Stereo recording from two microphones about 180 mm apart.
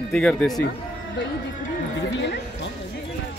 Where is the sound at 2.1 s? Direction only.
75° left (ahead or behind).